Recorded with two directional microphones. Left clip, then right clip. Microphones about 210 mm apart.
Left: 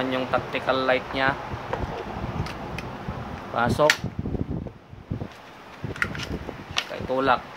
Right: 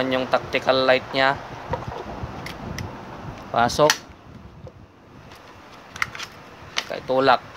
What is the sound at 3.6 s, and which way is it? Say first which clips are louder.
Speech: right 4 dB; 40° right (ahead or behind).